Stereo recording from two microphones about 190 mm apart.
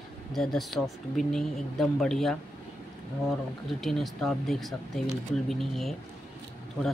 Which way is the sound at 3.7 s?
Centre (ahead or behind).